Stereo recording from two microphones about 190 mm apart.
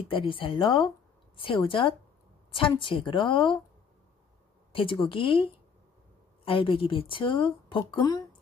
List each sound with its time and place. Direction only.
0.1 s a woman's voice: 25° left (ahead or behind)
4.7 s speech: 30° left (ahead or behind)